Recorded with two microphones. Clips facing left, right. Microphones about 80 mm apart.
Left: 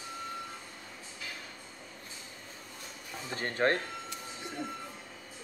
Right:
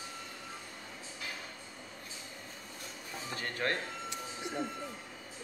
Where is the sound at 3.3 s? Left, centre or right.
Left.